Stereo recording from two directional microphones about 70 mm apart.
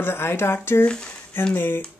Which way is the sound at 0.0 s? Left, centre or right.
Left.